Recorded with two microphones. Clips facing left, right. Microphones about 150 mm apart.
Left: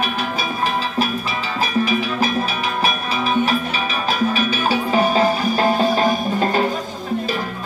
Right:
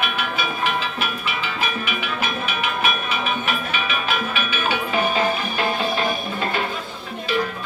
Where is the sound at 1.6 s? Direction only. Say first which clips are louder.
Left 11 dB; 35° left (ahead or behind).